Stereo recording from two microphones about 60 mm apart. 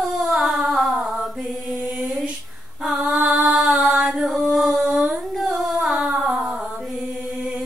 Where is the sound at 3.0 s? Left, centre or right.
Centre.